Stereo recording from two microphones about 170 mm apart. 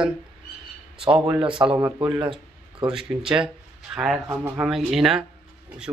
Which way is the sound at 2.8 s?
5° right (ahead or behind).